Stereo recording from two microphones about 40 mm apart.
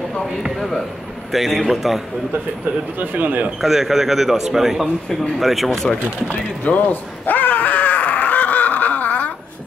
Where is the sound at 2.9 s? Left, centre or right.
Right.